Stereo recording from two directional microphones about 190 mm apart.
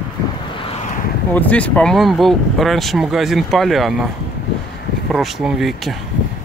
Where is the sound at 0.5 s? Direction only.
30° left (ahead or behind).